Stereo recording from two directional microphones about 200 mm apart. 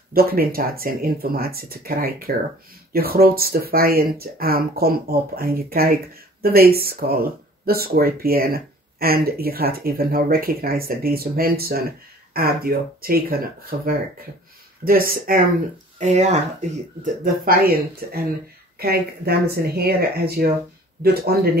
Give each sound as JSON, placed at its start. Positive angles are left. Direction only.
{"t": 0.1, "sound": "speech", "side_deg": -50}
{"t": 16.0, "sound": "speech", "side_deg": -35}